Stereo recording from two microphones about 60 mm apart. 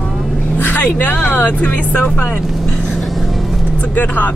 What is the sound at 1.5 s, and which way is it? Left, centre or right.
Speech, left.